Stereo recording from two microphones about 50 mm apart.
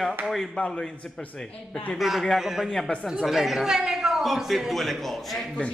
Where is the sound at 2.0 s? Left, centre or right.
Centre.